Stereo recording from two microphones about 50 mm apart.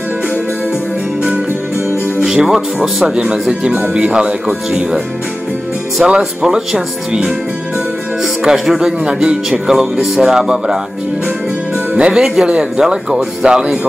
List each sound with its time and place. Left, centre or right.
2.2 s speech: centre
6.0 s speech: centre